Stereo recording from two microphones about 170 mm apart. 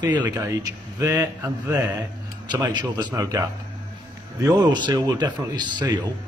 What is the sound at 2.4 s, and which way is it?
A man's voice, 25° right (ahead or behind).